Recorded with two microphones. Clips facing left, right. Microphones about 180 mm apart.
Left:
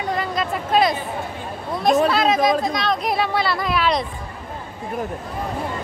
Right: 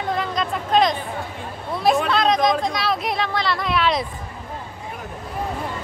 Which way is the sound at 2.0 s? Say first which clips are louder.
Left 1 dB; 5° left (ahead or behind).